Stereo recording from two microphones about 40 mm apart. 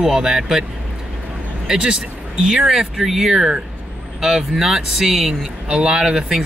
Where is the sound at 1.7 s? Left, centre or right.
Right.